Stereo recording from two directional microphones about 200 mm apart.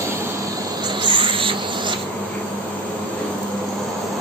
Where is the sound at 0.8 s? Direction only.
25° right (ahead or behind).